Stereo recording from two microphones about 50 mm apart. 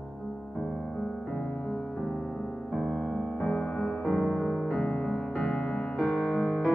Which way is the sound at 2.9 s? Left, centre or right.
Left.